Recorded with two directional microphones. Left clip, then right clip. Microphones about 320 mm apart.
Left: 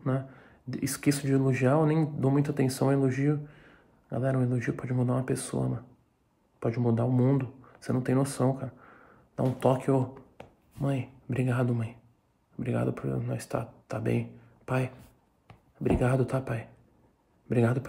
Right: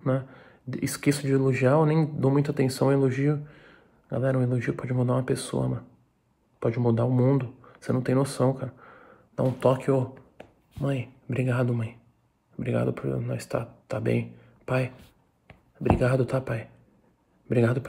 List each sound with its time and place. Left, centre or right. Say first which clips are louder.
0.0 s speech: right 5 dB; centre
16.0 s speech: right 3 dB; centre